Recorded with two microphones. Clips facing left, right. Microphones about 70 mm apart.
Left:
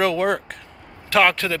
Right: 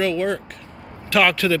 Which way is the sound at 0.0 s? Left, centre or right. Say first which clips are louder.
Left 2 dB; left.